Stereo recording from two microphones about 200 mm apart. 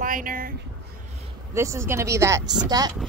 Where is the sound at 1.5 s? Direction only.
15° right (ahead or behind).